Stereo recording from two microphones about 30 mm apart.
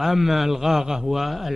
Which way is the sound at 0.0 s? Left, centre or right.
Centre.